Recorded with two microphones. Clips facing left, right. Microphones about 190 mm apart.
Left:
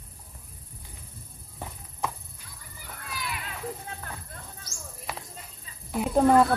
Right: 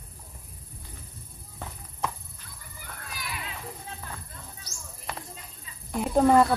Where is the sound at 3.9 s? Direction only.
55° left (ahead or behind).